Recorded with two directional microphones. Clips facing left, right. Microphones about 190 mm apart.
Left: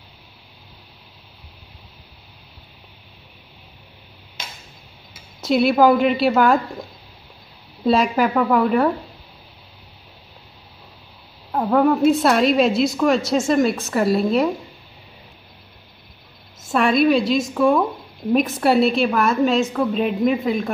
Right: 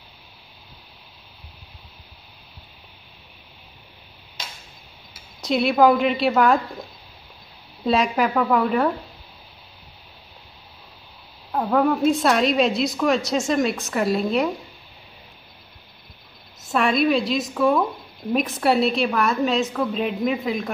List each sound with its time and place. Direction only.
5.4 s a woman's voice: centre (ahead or behind)
7.9 s a woman's voice: centre (ahead or behind)
11.5 s a woman's voice: 15° left (ahead or behind)
12.0 s a woman's voice: centre (ahead or behind)
16.6 s a woman's voice: centre (ahead or behind)